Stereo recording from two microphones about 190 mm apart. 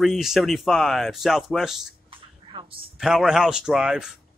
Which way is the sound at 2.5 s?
25° right (ahead or behind).